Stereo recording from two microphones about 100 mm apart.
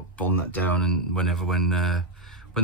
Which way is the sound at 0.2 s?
10° left (ahead or behind).